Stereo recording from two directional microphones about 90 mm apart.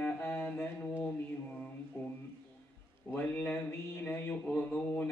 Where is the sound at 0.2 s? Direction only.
20° left (ahead or behind).